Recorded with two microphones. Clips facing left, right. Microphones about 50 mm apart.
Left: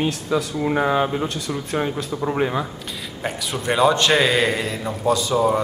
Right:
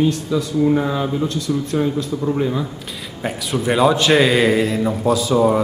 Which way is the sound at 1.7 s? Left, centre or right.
Left.